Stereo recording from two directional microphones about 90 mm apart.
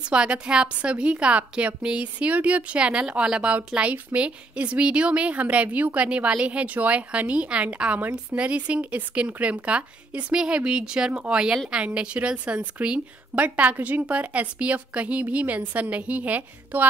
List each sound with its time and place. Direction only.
0.0 s a woman's voice: 10° right (ahead or behind)